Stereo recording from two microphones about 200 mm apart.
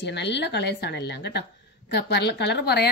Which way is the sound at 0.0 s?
60° left (ahead or behind).